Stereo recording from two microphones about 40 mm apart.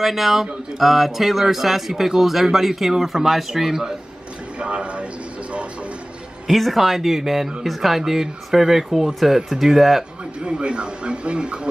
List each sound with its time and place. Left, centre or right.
0.0 s speech: centre
4.6 s a sound: right
6.4 s speech: centre
10.4 s speech: right